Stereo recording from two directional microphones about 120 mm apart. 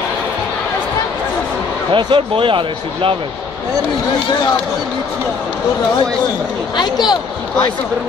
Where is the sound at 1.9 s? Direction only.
45° right (ahead or behind).